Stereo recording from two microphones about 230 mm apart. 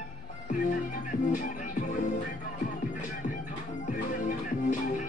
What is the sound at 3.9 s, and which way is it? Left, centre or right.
Music, left.